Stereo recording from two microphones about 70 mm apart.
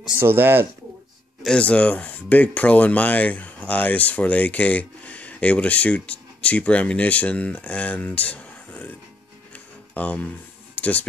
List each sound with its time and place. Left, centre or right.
0.2 s speech: right
1.5 s speech: centre
9.9 s speech: left